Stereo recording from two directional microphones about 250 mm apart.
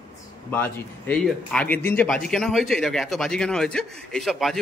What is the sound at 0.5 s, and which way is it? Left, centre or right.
Speech, centre.